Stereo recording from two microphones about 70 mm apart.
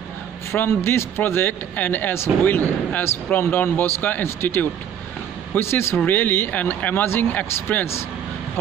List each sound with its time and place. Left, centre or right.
0.5 s a man's voice: left